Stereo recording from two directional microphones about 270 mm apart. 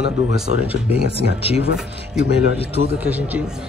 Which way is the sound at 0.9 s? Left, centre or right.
Right.